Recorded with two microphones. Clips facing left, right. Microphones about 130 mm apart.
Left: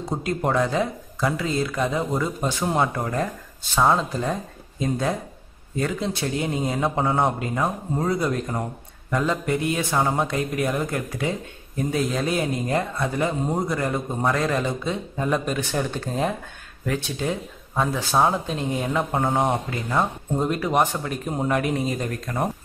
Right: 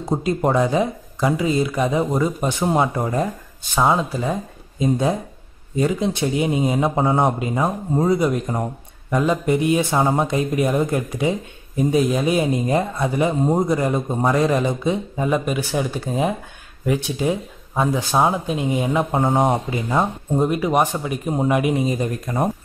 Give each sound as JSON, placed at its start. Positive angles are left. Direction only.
{"t": 0.1, "sound": "speech", "side_deg": -20}
{"t": 3.7, "sound": "speech", "side_deg": -5}